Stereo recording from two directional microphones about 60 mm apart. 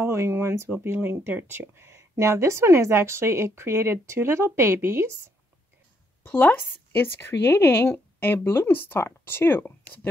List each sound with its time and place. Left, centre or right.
0.0 s speech: right
6.2 s speech: left